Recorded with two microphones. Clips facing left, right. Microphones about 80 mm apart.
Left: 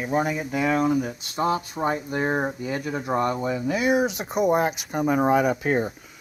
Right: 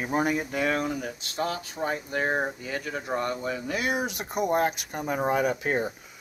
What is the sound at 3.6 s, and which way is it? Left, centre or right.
Speech, centre.